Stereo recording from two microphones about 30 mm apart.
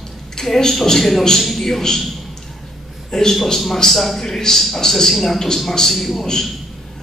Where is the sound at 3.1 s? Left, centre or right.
Centre.